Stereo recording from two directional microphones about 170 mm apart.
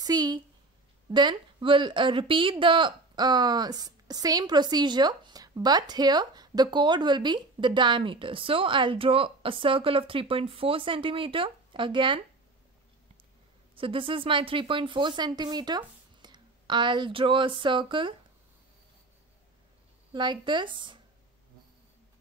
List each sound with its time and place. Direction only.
0.0 s a woman's voice: 25° right (ahead or behind)
13.7 s a woman's voice: 30° right (ahead or behind)
20.2 s a woman's voice: 25° right (ahead or behind)